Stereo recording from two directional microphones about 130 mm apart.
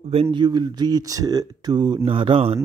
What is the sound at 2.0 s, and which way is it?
Speech, 45° right (ahead or behind).